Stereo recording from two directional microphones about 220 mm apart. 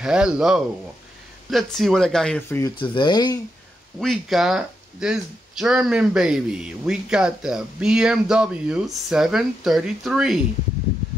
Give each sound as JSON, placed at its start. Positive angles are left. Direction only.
{"t": 0.0, "sound": "speech", "side_deg": -5}
{"t": 2.8, "sound": "speech", "side_deg": 20}
{"t": 4.0, "sound": "speech", "side_deg": 0}